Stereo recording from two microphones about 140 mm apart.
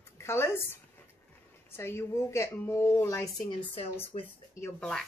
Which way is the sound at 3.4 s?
45° left (ahead or behind).